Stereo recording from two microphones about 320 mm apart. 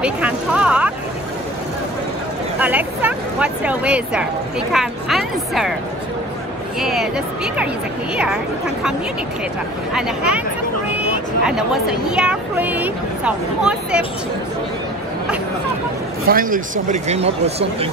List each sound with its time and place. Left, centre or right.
0.0 s speech: centre
2.6 s speech: centre
6.8 s speech: centre
9.9 s speech: centre
16.3 s speech: right